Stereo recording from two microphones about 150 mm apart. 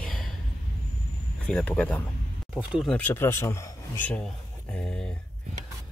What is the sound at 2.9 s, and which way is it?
Speech, 10° left (ahead or behind).